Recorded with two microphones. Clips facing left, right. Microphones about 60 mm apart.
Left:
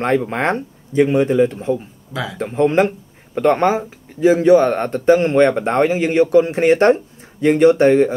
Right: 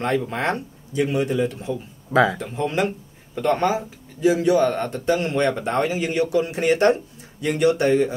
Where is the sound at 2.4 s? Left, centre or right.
Left.